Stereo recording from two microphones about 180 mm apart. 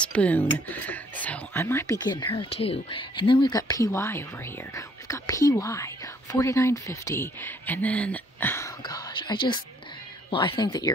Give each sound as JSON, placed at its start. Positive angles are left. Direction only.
{"t": 0.0, "sound": "speech", "side_deg": 5}